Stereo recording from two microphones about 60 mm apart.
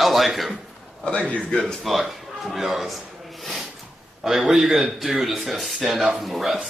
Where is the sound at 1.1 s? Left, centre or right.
Centre.